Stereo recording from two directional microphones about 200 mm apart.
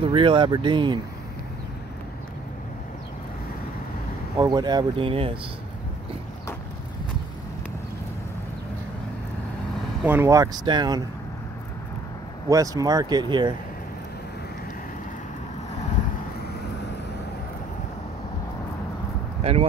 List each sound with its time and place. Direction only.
0.0 s speech: 25° right (ahead or behind)
4.4 s speech: 20° right (ahead or behind)
10.0 s speech: 10° right (ahead or behind)
12.4 s speech: 15° right (ahead or behind)